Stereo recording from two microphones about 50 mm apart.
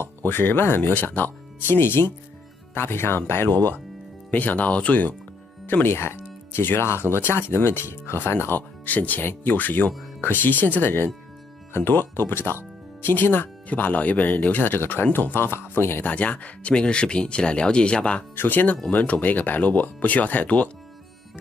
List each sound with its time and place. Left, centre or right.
0.0 s speech: left
4.3 s speech: left
5.7 s speech: left
16.0 s speech: left
18.3 s speech: left
18.9 s speech: left